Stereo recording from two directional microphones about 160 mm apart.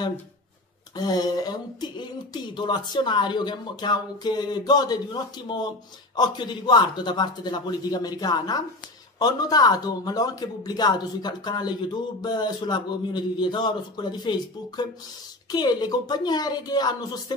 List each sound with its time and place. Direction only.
0.9 s speech: 25° left (ahead or behind)
15.5 s speech: 25° left (ahead or behind)